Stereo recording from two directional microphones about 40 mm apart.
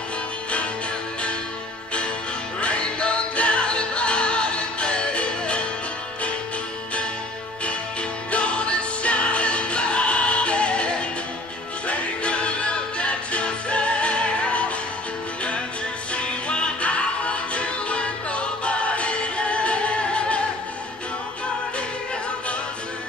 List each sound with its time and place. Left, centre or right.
2.6 s music: left
8.3 s music: left
16.1 s music: left